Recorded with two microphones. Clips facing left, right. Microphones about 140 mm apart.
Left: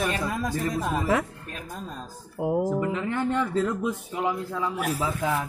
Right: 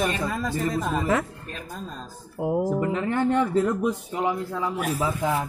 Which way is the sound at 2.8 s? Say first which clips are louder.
Right 3 dB; 35° right (ahead or behind).